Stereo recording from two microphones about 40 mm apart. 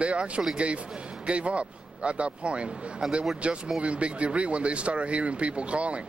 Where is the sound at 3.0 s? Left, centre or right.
Centre.